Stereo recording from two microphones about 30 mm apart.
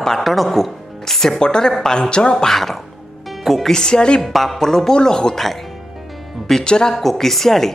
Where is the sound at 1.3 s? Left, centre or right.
Left.